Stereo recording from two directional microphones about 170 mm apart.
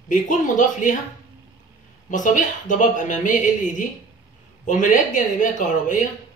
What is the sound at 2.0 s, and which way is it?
Speech, 50° left (ahead or behind).